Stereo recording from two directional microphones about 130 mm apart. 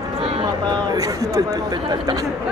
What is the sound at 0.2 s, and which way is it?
Speech, 45° right (ahead or behind).